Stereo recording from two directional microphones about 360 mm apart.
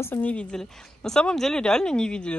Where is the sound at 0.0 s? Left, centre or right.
Centre.